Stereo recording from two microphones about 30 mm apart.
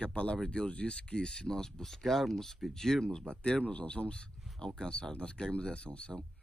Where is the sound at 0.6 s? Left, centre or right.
Left.